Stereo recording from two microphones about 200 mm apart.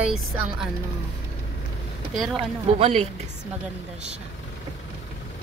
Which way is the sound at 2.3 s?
30° right (ahead or behind).